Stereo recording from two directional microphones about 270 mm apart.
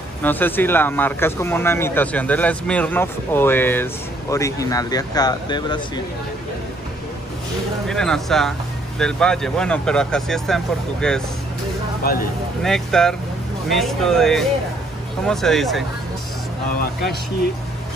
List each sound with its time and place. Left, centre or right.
0.2 s speech: centre
7.9 s speech: centre
12.0 s speech: left
12.6 s speech: centre